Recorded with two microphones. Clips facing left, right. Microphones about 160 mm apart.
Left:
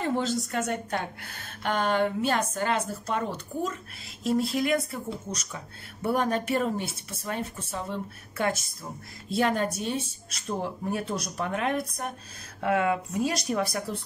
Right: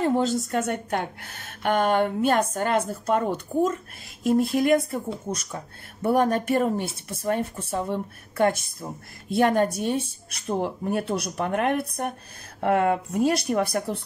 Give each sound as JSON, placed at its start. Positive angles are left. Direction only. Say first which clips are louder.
{"t": 0.5, "sound": "speech", "louder": "right 4 dB", "side_deg": -55}
{"t": 12.6, "sound": "speech", "louder": "right 4 dB", "side_deg": -45}